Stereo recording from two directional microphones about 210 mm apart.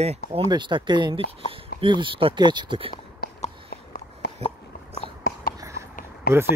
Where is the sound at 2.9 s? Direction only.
45° left (ahead or behind).